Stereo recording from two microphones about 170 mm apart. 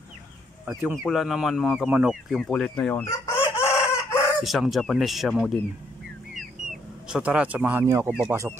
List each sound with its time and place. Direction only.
0.7 s speech: 10° right (ahead or behind)
1.0 s speech: centre (ahead or behind)
3.1 s chicken: 15° left (ahead or behind)
4.4 s speech: centre (ahead or behind)
7.1 s speech: 5° right (ahead or behind)